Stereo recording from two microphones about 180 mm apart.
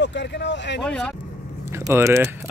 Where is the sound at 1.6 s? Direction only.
15° right (ahead or behind).